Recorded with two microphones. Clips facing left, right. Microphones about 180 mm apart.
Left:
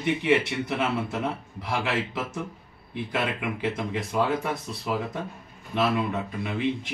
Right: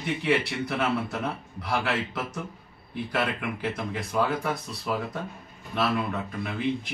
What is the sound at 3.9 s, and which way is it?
A man's voice, 25° left (ahead or behind).